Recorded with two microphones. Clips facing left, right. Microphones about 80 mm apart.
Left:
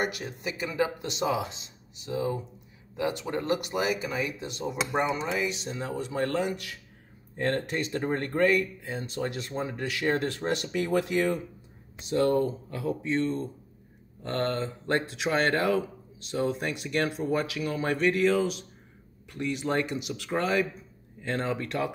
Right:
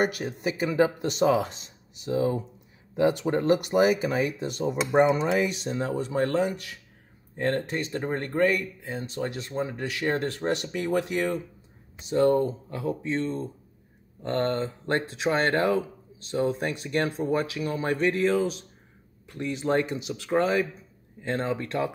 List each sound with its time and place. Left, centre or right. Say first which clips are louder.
0.0 s speech: right 5 dB; right